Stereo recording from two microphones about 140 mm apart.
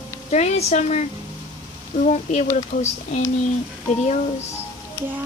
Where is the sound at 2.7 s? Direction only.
85° left.